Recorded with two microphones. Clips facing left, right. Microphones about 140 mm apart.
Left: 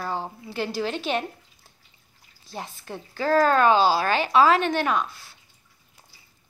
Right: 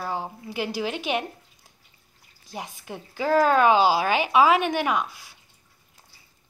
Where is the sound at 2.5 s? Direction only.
15° right (ahead or behind).